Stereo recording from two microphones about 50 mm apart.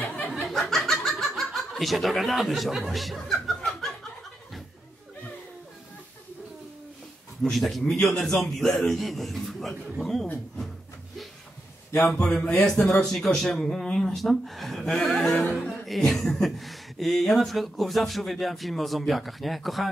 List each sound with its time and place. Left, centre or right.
0.0 s snicker: left
0.5 s a sound: centre
1.0 s snicker: centre
2.9 s chuckle: centre
7.5 s speech: centre
11.9 s speech: centre
12.2 s speech: centre
14.1 s a sound: centre
15.8 s speech: centre